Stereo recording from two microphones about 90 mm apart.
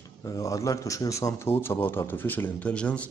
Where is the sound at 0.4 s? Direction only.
35° left (ahead or behind).